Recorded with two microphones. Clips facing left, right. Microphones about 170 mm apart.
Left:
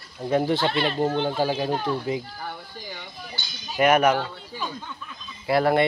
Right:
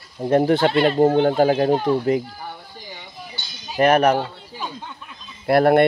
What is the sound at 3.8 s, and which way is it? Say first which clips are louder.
Speech: right 3 dB; 35° right (ahead or behind).